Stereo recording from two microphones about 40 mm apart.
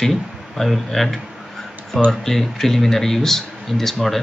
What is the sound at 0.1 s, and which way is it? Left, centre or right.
Speech, centre.